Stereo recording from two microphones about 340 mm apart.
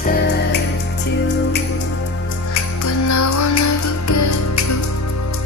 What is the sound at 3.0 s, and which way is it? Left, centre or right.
Music, left.